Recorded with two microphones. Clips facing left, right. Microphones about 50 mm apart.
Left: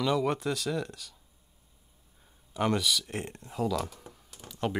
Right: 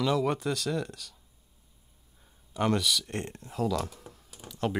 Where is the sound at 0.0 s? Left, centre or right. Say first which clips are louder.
Right 1 dB; centre.